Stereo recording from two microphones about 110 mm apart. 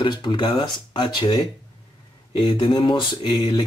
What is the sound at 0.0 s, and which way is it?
Speech, 45° left (ahead or behind).